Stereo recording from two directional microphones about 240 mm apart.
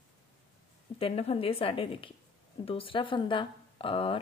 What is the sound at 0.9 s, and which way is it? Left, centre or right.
Speech, left.